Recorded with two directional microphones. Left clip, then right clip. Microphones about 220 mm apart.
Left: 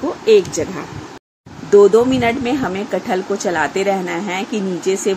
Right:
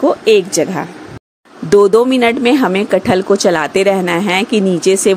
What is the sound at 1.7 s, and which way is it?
A woman's voice, 45° right (ahead or behind).